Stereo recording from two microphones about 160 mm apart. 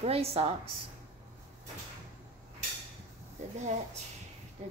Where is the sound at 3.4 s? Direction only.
45° right (ahead or behind).